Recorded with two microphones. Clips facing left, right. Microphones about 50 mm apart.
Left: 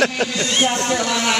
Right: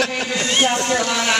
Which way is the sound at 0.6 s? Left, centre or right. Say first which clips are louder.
Even; centre.